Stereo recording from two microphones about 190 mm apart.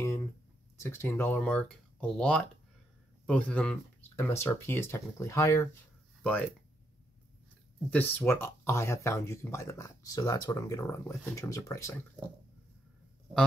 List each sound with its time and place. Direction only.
0.0 s a sound: 15° left (ahead or behind)
0.7 s speech: 15° left (ahead or behind)
7.9 s speech: 10° left (ahead or behind)